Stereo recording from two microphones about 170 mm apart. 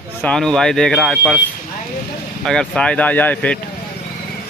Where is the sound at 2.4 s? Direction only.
5° left (ahead or behind).